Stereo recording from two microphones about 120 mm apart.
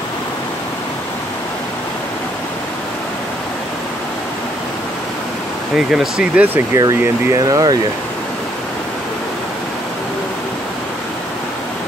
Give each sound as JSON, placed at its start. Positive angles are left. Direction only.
{"t": 5.8, "sound": "speech", "side_deg": -5}